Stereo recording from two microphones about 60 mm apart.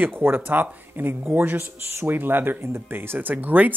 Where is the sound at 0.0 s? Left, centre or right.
Right.